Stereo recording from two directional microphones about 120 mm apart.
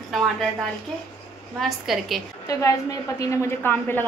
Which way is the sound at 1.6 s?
Centre (ahead or behind).